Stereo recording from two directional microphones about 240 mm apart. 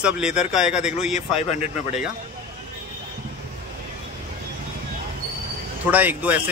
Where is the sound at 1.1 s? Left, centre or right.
Left.